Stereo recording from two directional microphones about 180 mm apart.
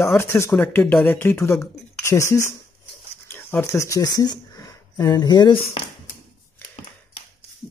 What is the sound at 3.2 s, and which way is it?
Speech, 10° left (ahead or behind).